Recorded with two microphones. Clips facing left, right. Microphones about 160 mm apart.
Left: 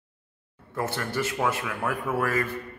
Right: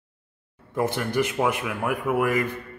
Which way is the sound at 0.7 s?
15° right (ahead or behind).